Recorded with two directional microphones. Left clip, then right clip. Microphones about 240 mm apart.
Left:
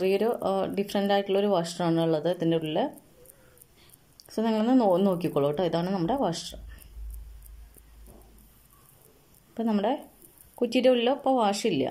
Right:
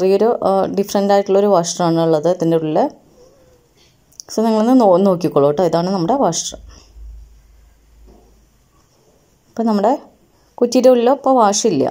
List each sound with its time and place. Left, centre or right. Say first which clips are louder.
0.0 s speech: right 12 dB; centre
4.3 s speech: right 11 dB; centre
9.5 s speech: right 12 dB; centre